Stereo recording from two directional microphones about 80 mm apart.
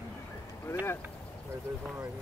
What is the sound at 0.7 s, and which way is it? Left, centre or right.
Vehicle, left.